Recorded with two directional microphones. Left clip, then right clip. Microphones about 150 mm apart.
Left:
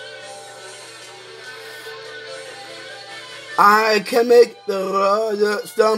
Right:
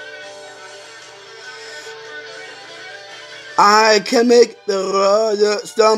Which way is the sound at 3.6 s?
25° right (ahead or behind).